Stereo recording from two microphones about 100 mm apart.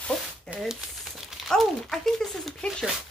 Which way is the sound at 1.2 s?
Centre (ahead or behind).